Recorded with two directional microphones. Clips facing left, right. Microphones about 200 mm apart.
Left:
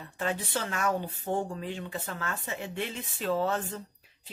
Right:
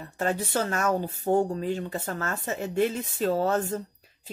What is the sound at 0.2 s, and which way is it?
A woman's voice, 45° right (ahead or behind).